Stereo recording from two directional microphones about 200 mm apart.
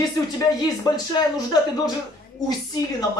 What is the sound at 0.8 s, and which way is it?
Speech, 20° left (ahead or behind).